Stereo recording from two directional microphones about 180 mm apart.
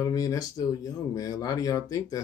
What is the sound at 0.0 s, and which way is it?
Speech, 20° left (ahead or behind).